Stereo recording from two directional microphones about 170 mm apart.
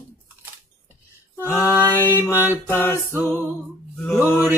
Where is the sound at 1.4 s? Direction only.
15° left (ahead or behind).